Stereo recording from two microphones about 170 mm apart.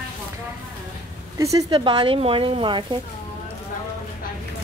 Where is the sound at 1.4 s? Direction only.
25° right (ahead or behind).